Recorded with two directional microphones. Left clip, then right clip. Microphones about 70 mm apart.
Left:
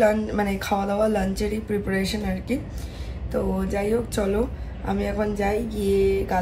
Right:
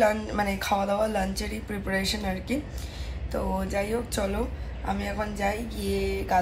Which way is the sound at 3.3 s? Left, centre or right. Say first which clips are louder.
Left 3 dB; left.